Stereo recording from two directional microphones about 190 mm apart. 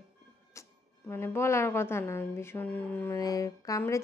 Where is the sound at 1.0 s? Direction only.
10° left (ahead or behind).